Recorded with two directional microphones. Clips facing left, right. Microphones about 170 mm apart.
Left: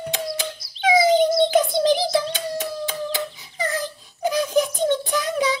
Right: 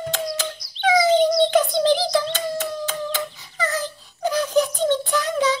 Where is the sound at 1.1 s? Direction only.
5° left (ahead or behind).